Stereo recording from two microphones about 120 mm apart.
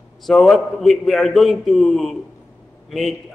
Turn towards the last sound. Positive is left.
turn(degrees=0)  # may be behind; listen again after turning